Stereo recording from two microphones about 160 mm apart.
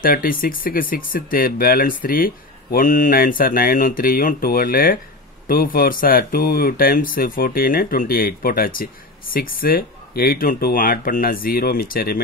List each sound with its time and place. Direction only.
0.0 s speech: 65° left (ahead or behind)